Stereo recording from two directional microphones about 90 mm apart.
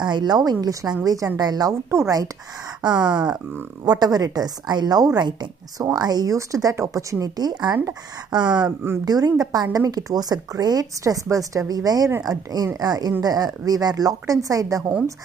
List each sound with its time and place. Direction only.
0.0 s speech: 55° right (ahead or behind); by 2.2 s 35° right (ahead or behind)
2.9 s speech: 10° right (ahead or behind)
3.8 s speech: 50° right (ahead or behind)
8.6 s speech: 25° right (ahead or behind)
9.0 s speech: 45° right (ahead or behind)